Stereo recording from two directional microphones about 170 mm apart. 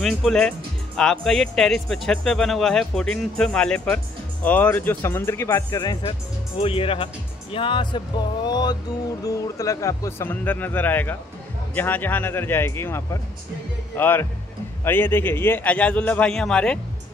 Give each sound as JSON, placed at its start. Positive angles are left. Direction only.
{"t": 0.0, "sound": "speech", "side_deg": 5}
{"t": 6.6, "sound": "speech", "side_deg": 35}